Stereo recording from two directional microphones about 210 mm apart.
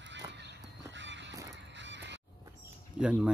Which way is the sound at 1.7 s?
60° right (ahead or behind).